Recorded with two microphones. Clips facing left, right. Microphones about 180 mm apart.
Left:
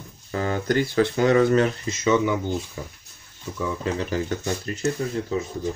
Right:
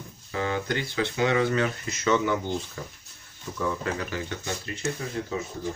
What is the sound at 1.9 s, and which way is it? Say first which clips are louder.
Speech: left 3 dB; 15° left (ahead or behind).